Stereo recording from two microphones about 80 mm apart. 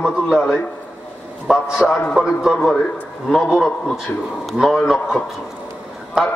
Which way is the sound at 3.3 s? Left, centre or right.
Centre.